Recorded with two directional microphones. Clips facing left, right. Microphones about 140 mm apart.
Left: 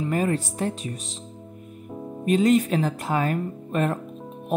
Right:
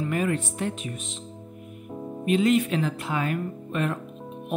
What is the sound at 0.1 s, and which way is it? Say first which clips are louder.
Speech: left 3 dB; 35° left (ahead or behind).